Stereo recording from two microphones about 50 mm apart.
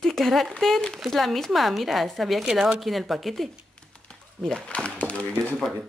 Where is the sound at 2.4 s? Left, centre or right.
Centre.